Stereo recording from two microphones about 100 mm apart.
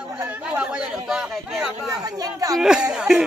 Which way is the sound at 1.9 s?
35° right (ahead or behind).